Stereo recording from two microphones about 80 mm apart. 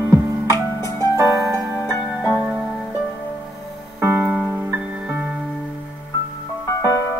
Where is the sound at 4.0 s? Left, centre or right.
Right.